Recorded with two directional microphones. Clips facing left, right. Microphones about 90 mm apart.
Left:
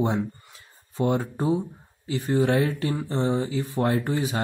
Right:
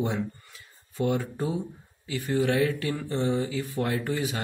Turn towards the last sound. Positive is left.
turn(degrees=30)  # may be behind; listen again after turning